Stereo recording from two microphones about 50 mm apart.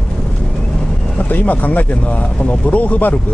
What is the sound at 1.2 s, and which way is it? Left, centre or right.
Speech, left.